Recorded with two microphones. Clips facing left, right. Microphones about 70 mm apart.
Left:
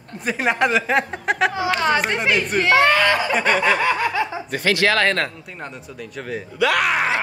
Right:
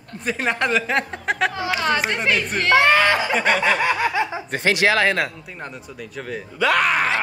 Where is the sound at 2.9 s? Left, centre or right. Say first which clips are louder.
Even; right.